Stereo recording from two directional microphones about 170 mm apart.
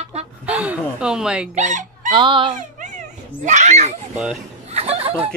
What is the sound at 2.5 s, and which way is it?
A child's voice, 45° right (ahead or behind).